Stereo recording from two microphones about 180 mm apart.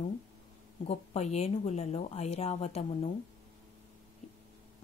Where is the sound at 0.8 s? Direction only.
35° left (ahead or behind).